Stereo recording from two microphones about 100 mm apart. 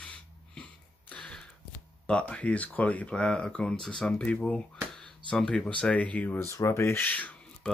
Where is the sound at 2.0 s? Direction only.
10° left (ahead or behind).